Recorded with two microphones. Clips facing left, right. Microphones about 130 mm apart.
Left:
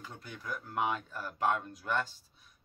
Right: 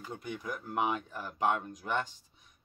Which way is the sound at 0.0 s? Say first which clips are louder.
Right 6 dB; 15° right (ahead or behind).